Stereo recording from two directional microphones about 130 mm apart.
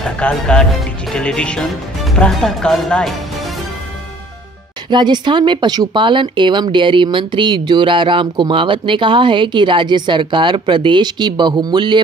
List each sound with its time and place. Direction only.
0.2 s speech: 5° left (ahead or behind)
4.8 s speech: 35° right (ahead or behind)